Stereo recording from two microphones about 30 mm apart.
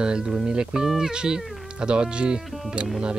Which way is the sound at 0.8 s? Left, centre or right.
Centre.